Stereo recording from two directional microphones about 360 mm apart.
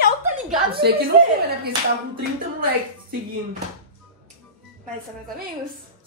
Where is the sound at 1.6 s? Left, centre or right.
Right.